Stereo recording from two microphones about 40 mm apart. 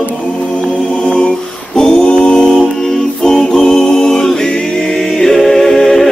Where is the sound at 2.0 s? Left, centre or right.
Left.